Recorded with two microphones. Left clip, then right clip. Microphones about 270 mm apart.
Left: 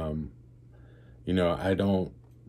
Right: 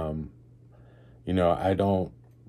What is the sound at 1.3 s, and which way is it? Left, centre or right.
Speech, centre.